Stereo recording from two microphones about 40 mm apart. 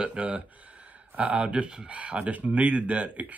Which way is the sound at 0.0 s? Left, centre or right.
Right.